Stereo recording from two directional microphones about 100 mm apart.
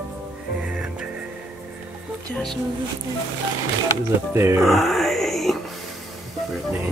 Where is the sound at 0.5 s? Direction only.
10° right (ahead or behind).